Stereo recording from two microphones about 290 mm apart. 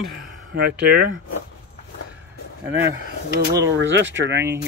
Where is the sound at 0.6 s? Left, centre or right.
Right.